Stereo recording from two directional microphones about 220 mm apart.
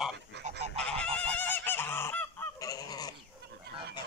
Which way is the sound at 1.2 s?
10° left (ahead or behind).